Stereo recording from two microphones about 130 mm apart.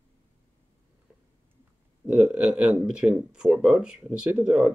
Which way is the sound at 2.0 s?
10° right (ahead or behind).